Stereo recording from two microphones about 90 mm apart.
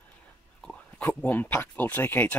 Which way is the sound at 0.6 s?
15° left (ahead or behind).